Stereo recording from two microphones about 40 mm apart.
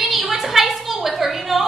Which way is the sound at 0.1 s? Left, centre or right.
Centre.